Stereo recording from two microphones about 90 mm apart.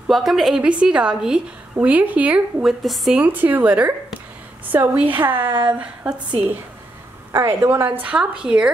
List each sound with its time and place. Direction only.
0.1 s a woman's voice: 5° right (ahead or behind)
2.6 s a woman's voice: centre (ahead or behind)
3.2 s a woman's voice: 20° right (ahead or behind)
7.3 s a woman's voice: 30° right (ahead or behind); by 8.7 s 10° right (ahead or behind)